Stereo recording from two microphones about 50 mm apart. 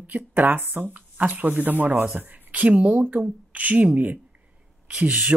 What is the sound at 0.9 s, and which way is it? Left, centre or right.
A woman's voice, right.